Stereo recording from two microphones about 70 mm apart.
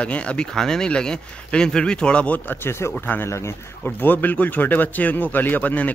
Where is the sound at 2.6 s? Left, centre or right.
Left.